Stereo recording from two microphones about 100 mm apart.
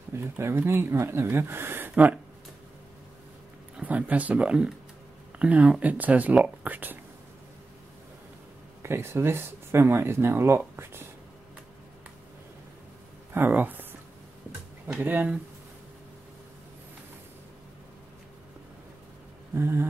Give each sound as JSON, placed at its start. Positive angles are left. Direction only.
{"t": 0.1, "sound": "speech", "side_deg": -25}
{"t": 3.7, "sound": "speech", "side_deg": -15}
{"t": 8.8, "sound": "speech", "side_deg": -25}
{"t": 13.3, "sound": "speech", "side_deg": -20}
{"t": 15.0, "sound": "speech", "side_deg": -20}
{"t": 19.5, "sound": "speech", "side_deg": -25}